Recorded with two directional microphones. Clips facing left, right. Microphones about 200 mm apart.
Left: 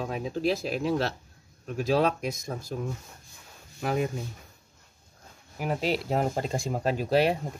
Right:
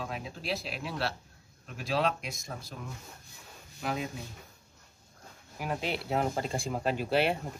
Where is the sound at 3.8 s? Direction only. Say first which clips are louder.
Left 6 dB; 50° left (ahead or behind).